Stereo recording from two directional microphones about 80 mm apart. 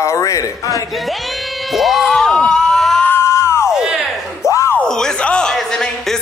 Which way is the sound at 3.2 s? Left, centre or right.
Left.